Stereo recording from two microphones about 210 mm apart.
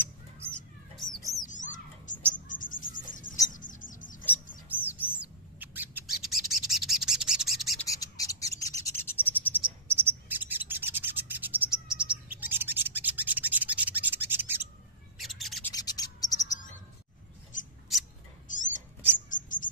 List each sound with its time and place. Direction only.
1.4 s bird: 35° left (ahead or behind)
2.3 s insect: 40° left (ahead or behind)
3.5 s bird: 40° left (ahead or behind)
4.6 s bird: 10° right (ahead or behind)
7.9 s bird: 15° left (ahead or behind)
9.6 s cricket: 10° right (ahead or behind)
12.4 s rub: 10° right (ahead or behind)
15.1 s bird: centre (ahead or behind)
15.7 s bird: 20° left (ahead or behind)
17.5 s mouse: 35° left (ahead or behind)
18.5 s whispering: 40° left (ahead or behind)
19.2 s bird: 40° left (ahead or behind)